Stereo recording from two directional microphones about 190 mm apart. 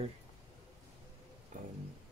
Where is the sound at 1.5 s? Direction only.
45° right (ahead or behind).